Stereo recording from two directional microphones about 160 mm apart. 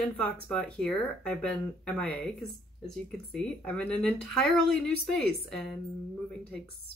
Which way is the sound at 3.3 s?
5° left (ahead or behind).